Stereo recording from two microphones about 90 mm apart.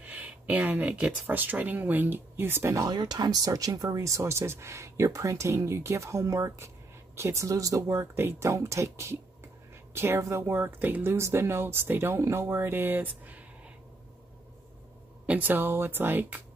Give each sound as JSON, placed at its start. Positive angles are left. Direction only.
{"t": 0.0, "sound": "speech", "side_deg": -15}
{"t": 2.9, "sound": "speech", "side_deg": -50}
{"t": 15.2, "sound": "speech", "side_deg": -20}